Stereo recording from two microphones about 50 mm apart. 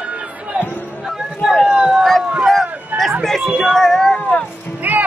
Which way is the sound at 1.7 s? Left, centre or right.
Centre.